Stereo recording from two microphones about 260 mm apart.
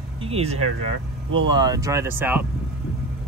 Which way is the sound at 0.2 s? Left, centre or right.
Right.